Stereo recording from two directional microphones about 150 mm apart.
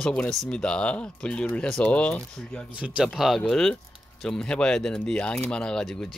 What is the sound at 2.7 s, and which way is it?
Speech, 10° right (ahead or behind).